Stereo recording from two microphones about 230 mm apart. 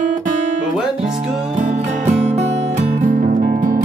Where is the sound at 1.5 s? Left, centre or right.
Right.